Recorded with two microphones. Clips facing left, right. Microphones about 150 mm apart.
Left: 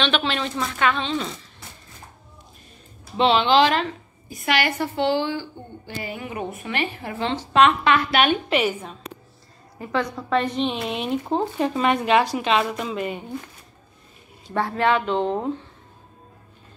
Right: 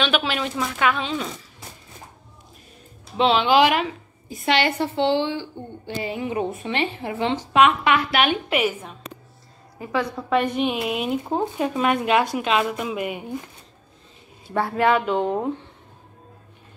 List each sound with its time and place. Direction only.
0.0 s speech: 5° right (ahead or behind)
3.2 s speech: centre (ahead or behind)
4.3 s a woman's voice: 25° right (ahead or behind)
14.5 s speech: 10° right (ahead or behind)